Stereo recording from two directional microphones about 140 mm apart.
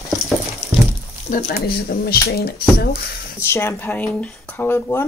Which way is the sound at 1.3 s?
50° left (ahead or behind).